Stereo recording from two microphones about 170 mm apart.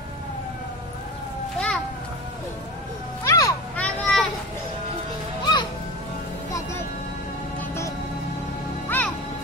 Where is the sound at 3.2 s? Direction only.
20° left (ahead or behind).